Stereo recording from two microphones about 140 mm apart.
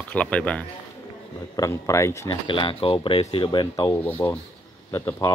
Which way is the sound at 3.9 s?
15° left (ahead or behind).